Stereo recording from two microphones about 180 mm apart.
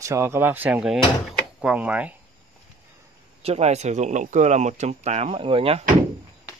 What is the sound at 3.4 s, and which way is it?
Speech, 35° right (ahead or behind).